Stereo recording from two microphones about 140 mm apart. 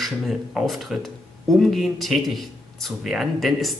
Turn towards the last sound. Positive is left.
turn(degrees=0)  # may be behind; listen again after turning